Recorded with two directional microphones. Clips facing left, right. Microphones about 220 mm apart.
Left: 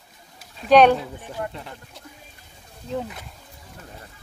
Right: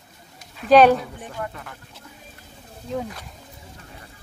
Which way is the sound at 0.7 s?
Centre (ahead or behind).